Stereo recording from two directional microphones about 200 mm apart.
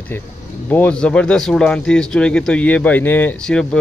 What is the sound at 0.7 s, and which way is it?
Speech, 10° left (ahead or behind).